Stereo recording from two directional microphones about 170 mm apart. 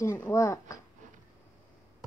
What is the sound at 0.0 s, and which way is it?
Speech, 15° left (ahead or behind).